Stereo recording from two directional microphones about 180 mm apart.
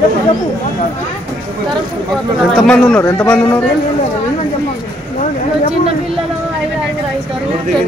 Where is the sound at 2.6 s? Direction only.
5° left (ahead or behind).